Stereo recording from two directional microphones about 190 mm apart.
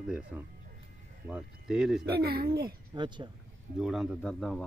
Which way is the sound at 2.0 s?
55° right (ahead or behind).